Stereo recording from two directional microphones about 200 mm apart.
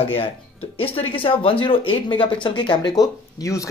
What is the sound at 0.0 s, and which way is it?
Speech, 30° left (ahead or behind).